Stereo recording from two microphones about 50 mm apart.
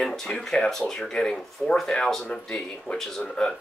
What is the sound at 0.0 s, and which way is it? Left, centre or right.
Speech, centre.